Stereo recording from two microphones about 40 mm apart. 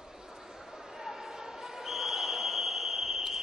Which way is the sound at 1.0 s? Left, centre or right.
Centre.